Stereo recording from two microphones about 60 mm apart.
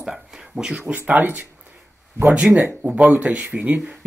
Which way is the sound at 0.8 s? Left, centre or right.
Right.